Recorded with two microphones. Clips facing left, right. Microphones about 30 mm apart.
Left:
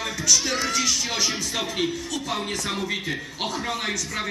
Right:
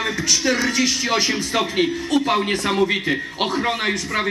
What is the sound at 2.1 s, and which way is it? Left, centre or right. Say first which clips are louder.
A man's voice: right 9 dB; right.